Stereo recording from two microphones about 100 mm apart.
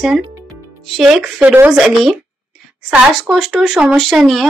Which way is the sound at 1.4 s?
15° right (ahead or behind).